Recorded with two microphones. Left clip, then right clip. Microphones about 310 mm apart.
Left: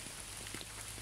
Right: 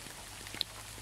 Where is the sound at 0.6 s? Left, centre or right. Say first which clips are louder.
Right 12 dB; right.